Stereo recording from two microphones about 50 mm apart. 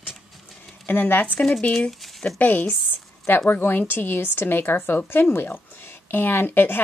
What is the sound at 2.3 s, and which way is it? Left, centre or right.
Speech, left.